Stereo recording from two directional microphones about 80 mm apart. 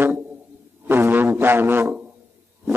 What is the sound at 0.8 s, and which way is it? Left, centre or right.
Music, right.